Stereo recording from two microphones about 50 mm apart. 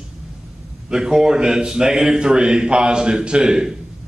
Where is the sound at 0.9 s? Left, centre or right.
Centre.